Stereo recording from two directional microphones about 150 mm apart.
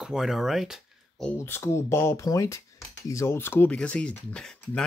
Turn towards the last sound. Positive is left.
turn(degrees=5)  # may be behind; listen again after turning